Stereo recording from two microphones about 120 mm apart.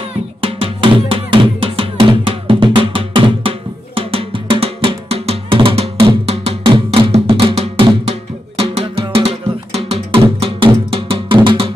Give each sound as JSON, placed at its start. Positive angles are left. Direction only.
{"t": 0.4, "sound": "drum", "side_deg": -50}